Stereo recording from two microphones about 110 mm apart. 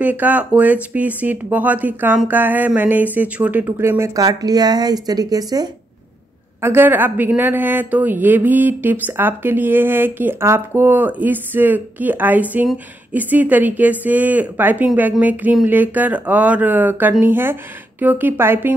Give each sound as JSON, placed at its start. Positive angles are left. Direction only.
{"t": 0.0, "sound": "speech", "side_deg": -15}
{"t": 4.1, "sound": "speech", "side_deg": -35}
{"t": 6.6, "sound": "speech", "side_deg": -20}